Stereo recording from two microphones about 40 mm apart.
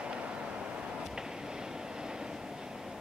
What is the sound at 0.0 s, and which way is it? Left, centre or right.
Vehicle, right.